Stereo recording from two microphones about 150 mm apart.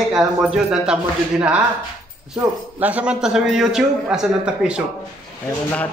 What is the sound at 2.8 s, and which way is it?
A man's voice, 10° right (ahead or behind).